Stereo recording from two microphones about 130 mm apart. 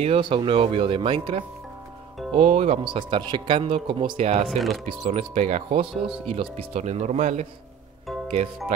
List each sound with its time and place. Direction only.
0.0 s speech: 45° right (ahead or behind)
2.3 s speech: 60° right (ahead or behind)
2.8 s speech: 40° right (ahead or behind)
4.5 s speech: centre (ahead or behind)
5.0 s speech: 60° right (ahead or behind)
5.7 s speech: 45° right (ahead or behind); by 7.4 s 65° right (ahead or behind)